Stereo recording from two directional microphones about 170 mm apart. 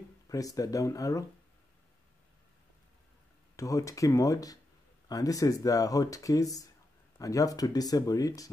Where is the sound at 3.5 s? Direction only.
20° left (ahead or behind).